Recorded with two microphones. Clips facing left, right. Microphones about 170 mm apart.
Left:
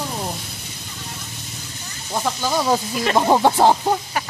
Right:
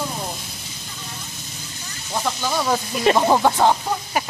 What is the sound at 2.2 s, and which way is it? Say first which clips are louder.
Speech: left 2 dB; 10° left (ahead or behind).